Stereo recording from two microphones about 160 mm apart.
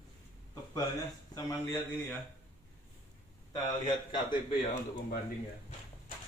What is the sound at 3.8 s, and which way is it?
Speech, 30° left (ahead or behind).